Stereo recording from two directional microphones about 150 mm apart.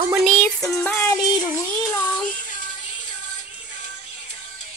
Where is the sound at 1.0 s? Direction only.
25° left (ahead or behind).